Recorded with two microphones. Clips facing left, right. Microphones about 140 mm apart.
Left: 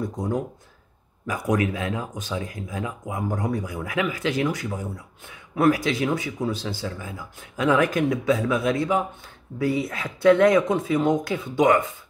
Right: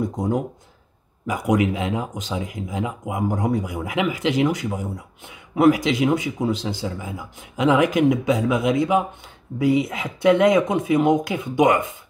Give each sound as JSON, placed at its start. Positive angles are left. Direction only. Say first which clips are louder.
{"t": 1.2, "sound": "speech", "louder": "right 3 dB", "side_deg": -15}